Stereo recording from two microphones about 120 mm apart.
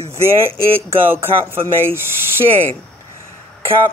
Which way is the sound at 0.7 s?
20° right (ahead or behind).